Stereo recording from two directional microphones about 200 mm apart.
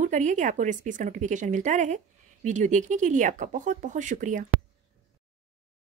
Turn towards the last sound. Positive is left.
turn(degrees=-40)  # may be behind; listen again after turning